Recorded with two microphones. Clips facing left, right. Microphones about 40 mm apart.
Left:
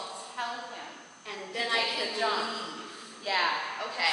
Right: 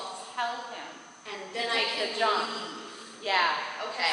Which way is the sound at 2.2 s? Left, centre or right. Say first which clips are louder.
Right 4 dB; right.